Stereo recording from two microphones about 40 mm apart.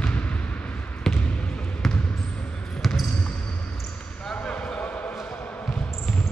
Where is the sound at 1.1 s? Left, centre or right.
Centre.